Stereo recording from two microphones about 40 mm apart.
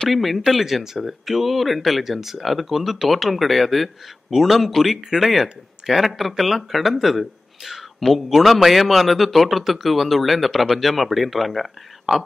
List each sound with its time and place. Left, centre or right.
0.1 s speech: centre